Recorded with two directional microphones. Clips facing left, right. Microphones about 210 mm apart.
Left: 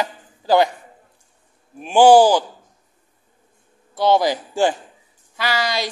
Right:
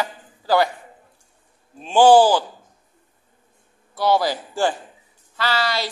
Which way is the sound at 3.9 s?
20° left (ahead or behind).